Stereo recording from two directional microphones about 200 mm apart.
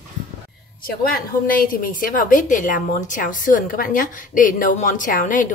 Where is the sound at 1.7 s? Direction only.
45° left (ahead or behind).